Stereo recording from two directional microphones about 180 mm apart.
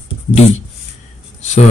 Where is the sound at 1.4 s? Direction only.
40° left (ahead or behind).